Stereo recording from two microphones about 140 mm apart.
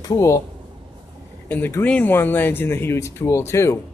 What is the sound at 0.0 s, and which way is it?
Speech, 20° left (ahead or behind).